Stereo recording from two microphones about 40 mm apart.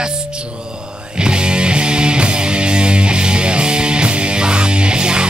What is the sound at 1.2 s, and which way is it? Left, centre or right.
Music, right.